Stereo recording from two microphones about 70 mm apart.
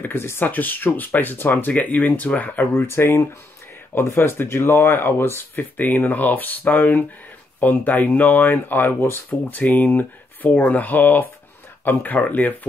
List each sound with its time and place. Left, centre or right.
0.0 s speech: left